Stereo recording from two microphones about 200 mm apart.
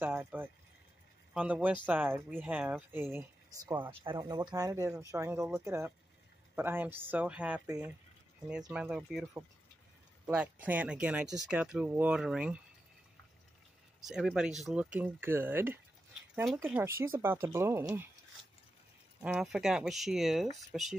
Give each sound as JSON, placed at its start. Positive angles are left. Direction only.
{"t": 0.0, "sound": "speech", "side_deg": -10}
{"t": 7.6, "sound": "speech", "side_deg": -15}
{"t": 8.5, "sound": "speech", "side_deg": -5}
{"t": 14.0, "sound": "speech", "side_deg": -5}
{"t": 19.2, "sound": "speech", "side_deg": -5}